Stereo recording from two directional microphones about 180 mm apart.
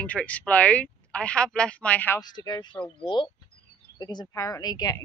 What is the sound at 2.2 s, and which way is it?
A woman's voice, 20° left (ahead or behind).